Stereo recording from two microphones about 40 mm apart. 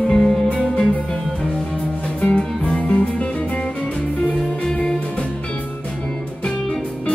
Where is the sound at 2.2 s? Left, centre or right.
Left.